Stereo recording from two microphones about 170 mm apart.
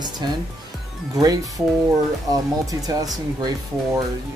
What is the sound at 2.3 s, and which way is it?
Speech, 20° right (ahead or behind).